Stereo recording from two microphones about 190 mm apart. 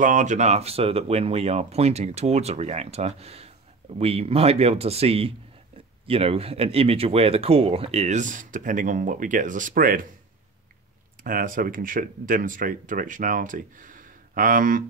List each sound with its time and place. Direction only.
0.0 s speech: 40° right (ahead or behind)
11.2 s speech: 45° right (ahead or behind)